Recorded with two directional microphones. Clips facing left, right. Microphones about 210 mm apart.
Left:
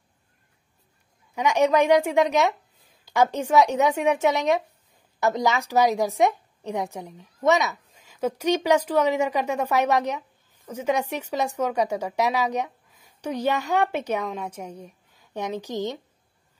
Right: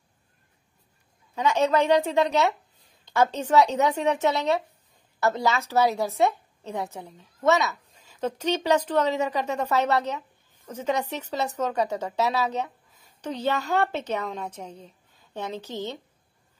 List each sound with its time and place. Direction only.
1.3 s a woman's voice: 15° left (ahead or behind)